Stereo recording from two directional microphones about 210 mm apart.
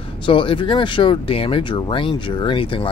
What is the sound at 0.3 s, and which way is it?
Speech, 25° left (ahead or behind).